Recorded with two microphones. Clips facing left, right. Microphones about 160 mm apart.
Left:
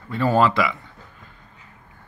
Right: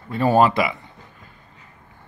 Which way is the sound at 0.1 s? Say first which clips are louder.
Right 2 dB; 15° right (ahead or behind).